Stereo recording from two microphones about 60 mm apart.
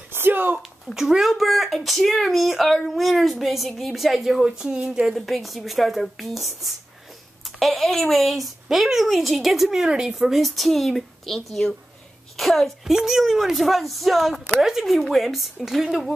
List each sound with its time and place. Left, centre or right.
0.1 s a sound: right
0.9 s speech: centre
5.1 s speech: centre